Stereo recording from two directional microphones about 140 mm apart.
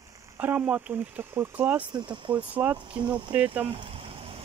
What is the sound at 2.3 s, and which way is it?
Speech, 10° right (ahead or behind).